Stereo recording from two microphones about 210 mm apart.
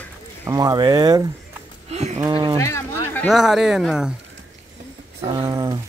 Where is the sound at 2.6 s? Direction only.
15° left (ahead or behind).